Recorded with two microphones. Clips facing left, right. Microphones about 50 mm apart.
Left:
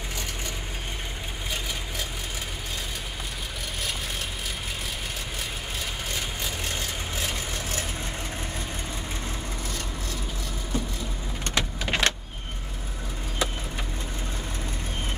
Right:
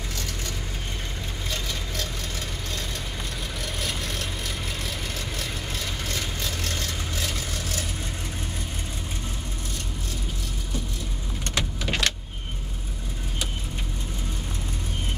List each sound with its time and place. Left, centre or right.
6.1 s vehicle: centre
11.5 s vehicle: left